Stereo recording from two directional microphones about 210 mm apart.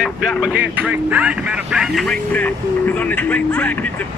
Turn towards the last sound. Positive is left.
turn(degrees=5)  # may be behind; listen again after turning